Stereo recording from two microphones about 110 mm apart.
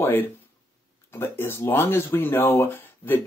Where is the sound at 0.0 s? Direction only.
20° left (ahead or behind).